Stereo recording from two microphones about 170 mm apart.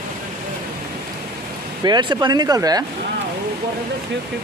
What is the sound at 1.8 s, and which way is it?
Speech, 25° right (ahead or behind).